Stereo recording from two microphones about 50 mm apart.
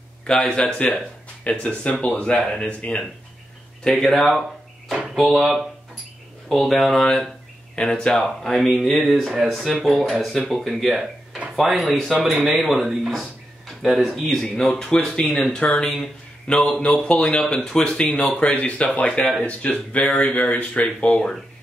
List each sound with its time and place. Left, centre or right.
0.3 s speech: centre
1.4 s speech: left
3.8 s speech: centre
4.3 s a sound: centre
5.1 s speech: centre
7.7 s speech: centre
8.1 s speech: centre
10.5 s speech: centre
18.0 s speech: left